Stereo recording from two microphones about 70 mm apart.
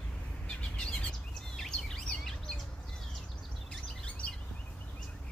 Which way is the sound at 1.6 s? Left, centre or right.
Centre.